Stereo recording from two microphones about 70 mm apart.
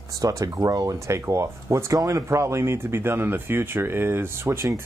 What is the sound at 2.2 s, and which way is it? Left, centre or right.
Speech, right.